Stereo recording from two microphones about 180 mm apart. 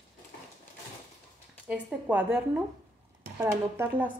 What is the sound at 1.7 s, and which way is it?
Speech, 5° right (ahead or behind).